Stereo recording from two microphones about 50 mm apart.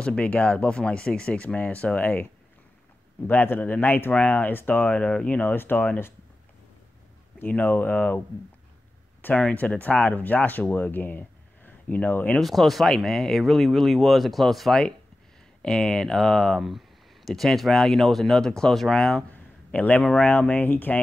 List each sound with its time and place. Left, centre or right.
0.0 s speech: left
3.3 s a man's voice: left
7.3 s speech: left
9.3 s speech: left
12.4 s speech: centre
19.3 s a sound: left
20.2 s speech: left